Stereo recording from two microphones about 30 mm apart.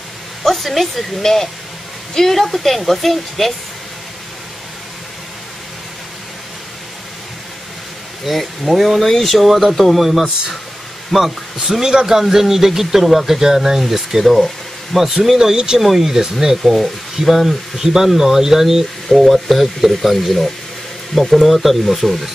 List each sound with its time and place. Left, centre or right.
0.4 s speech: centre
1.2 s a woman's voice: centre
8.3 s a woman's voice: centre
9.5 s speech: centre
9.8 s a woman's voice: centre
11.1 s speech: centre
11.8 s speech: right
12.2 s speech: centre
15.5 s speech: right
15.8 s speech: centre
16.1 s speech: centre
19.0 s a woman's voice: centre